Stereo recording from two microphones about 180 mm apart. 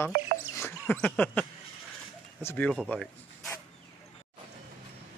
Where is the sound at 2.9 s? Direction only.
10° left (ahead or behind).